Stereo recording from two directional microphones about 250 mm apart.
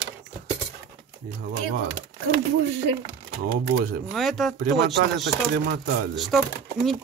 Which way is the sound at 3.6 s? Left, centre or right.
Right.